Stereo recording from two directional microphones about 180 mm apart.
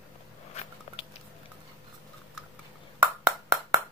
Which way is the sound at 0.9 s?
30° left (ahead or behind).